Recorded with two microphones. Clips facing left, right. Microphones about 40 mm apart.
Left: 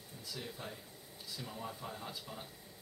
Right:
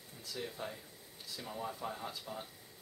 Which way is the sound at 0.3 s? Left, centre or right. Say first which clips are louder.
Right 3 dB; centre.